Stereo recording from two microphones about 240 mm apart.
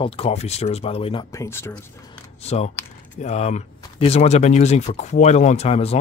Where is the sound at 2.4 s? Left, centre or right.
Left.